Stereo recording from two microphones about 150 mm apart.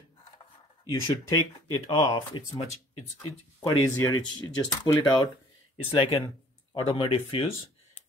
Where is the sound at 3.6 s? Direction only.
20° left (ahead or behind).